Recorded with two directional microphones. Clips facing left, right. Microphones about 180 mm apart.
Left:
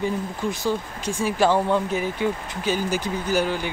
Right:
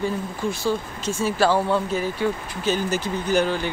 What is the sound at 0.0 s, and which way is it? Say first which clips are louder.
Speech: even; 15° left (ahead or behind).